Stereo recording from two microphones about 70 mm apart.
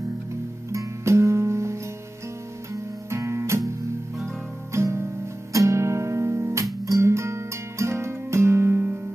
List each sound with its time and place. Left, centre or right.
0.7 s music: right
4.7 s music: right